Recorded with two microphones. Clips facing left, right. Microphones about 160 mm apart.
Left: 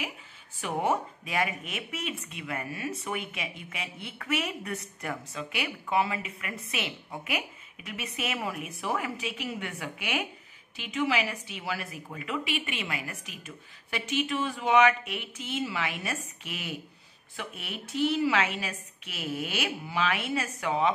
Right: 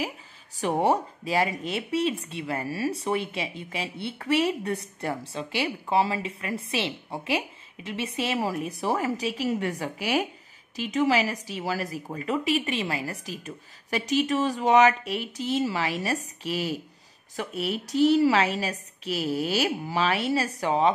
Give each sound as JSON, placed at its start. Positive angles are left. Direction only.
{"t": 0.6, "sound": "speech", "side_deg": -35}